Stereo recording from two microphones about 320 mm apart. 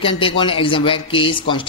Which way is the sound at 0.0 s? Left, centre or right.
Centre.